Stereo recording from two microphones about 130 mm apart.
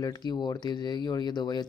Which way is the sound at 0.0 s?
30° left (ahead or behind).